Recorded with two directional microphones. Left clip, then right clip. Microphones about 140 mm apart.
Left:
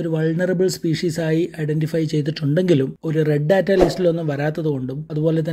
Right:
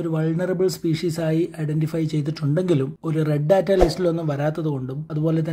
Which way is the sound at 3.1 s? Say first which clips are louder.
Left 2 dB; 30° left (ahead or behind).